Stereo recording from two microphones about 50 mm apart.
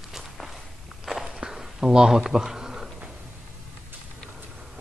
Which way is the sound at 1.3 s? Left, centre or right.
Centre.